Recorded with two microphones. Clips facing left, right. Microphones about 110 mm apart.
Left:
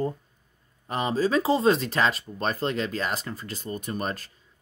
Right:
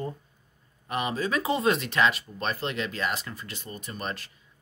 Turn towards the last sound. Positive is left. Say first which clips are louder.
# left 5 dB
turn(degrees=40)  # may be behind; listen again after turning